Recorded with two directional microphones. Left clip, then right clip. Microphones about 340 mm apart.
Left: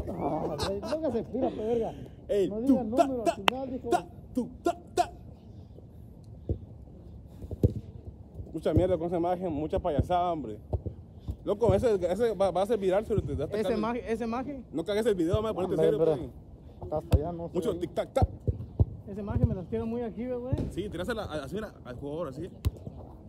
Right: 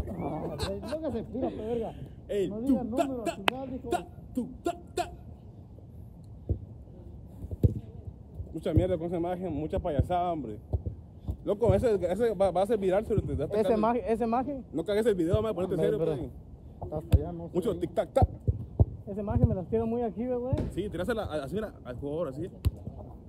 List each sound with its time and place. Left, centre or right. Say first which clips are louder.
0.0 s a sound: left 4 dB; left
1.6 s speech: left 3 dB; left
3.5 s speech: left 1 dB; centre
3.9 s a sound: left 4 dB; left
8.5 s speech: left 2 dB; centre
13.7 s speech: right 4 dB; centre
16.9 s speech: left 4 dB; centre
17.5 s speech: right 3 dB; centre